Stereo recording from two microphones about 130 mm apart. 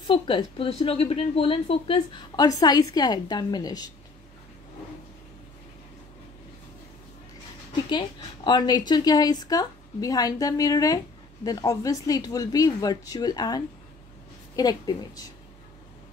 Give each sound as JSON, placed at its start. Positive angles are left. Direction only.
{"t": 0.0, "sound": "a woman's voice", "side_deg": 40}
{"t": 2.3, "sound": "a woman's voice", "side_deg": 30}
{"t": 8.5, "sound": "a woman's voice", "side_deg": 35}